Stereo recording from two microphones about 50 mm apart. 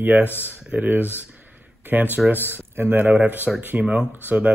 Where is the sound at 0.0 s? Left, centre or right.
Right.